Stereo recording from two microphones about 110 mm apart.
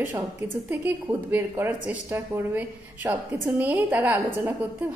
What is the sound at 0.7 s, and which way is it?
A woman's voice, 15° right (ahead or behind).